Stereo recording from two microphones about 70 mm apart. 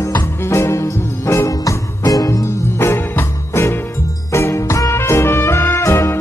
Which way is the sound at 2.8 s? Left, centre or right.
Left.